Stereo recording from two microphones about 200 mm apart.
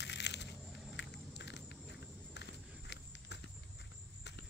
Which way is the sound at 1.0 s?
60° left (ahead or behind).